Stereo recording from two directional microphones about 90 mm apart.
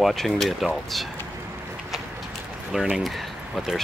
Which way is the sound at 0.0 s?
5° left (ahead or behind).